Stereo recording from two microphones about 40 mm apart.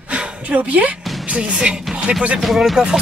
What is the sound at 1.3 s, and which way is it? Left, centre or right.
Speech, right.